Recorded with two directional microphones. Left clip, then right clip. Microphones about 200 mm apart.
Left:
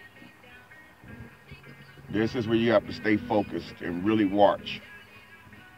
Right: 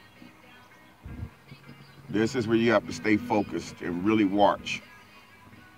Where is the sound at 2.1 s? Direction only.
15° left (ahead or behind).